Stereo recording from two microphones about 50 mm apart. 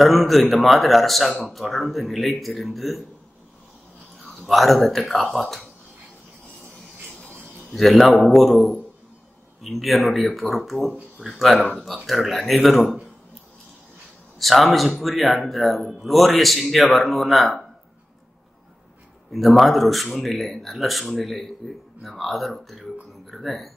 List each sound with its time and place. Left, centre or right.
0.0 s speech: centre
4.2 s speech: centre
8.2 s speech: centre
14.4 s speech: centre
19.3 s speech: centre